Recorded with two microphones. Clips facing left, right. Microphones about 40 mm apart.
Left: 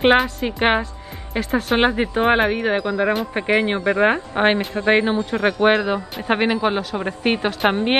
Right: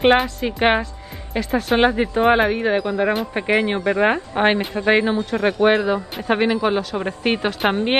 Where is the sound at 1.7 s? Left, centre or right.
Centre.